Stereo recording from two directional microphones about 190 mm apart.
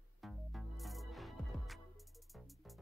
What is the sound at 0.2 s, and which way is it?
Music, centre (ahead or behind).